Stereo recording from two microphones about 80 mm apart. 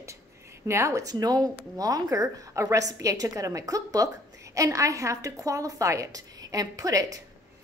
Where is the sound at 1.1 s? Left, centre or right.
Right.